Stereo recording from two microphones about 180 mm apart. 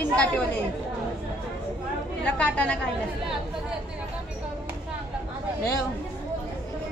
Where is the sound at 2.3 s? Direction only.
5° left (ahead or behind).